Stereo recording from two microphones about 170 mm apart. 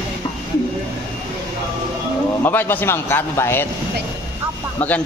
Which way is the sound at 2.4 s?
10° left (ahead or behind).